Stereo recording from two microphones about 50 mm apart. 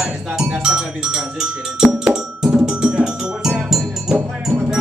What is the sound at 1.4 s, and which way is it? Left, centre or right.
Music, centre.